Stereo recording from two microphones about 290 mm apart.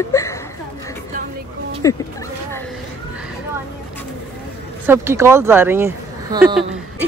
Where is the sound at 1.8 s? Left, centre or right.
Centre.